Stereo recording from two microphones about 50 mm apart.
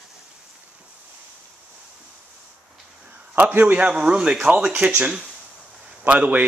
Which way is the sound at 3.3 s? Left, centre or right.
Right.